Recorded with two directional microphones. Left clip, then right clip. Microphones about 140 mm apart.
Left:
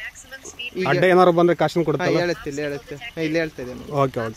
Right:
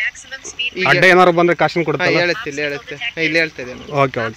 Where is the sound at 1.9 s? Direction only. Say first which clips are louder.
Right 5 dB; 90° left.